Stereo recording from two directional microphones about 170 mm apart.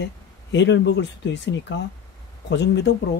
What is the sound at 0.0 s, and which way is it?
Speech, 90° left.